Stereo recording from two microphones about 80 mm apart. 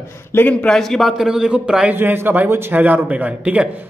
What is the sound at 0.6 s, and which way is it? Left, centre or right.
A man's voice, centre.